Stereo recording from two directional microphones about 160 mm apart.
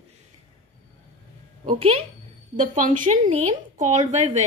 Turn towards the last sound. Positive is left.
turn(degrees=-45)  # may be behind; listen again after turning